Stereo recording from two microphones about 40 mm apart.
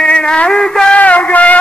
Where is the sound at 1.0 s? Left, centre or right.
Left.